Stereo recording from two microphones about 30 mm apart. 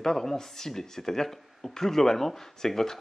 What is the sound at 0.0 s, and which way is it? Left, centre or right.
Speech, centre.